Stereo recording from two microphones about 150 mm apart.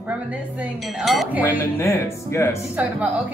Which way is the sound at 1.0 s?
Centre (ahead or behind).